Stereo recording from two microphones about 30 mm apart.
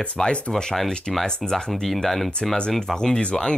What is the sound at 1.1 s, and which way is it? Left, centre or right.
Speech, centre.